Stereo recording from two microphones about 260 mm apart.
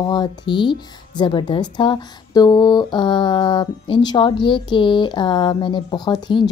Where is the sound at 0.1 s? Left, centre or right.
Centre.